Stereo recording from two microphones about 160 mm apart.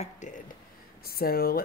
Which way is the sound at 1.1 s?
70° left (ahead or behind).